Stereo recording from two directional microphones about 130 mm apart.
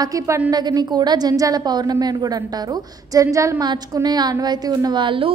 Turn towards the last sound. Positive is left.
turn(degrees=-40)  # may be behind; listen again after turning